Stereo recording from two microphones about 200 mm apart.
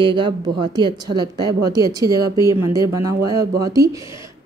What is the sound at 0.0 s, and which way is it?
Speech, 25° right (ahead or behind).